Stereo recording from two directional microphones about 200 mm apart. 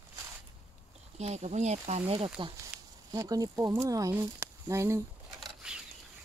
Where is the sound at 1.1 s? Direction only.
35° right (ahead or behind).